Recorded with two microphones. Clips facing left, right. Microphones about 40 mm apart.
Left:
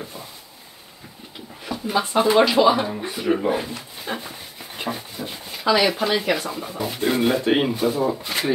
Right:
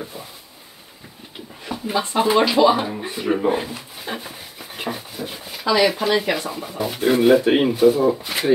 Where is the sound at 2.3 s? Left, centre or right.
Centre.